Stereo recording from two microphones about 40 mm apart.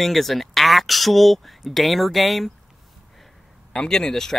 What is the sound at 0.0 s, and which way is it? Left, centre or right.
Speech, centre.